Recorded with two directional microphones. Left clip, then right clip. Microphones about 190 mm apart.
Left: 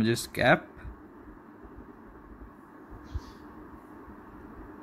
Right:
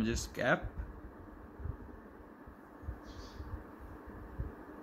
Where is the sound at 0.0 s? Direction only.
20° left (ahead or behind).